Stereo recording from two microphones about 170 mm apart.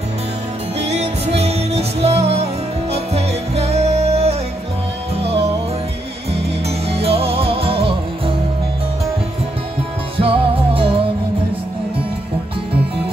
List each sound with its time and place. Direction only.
0.7 s music: 40° right (ahead or behind)
10.1 s music: 35° right (ahead or behind)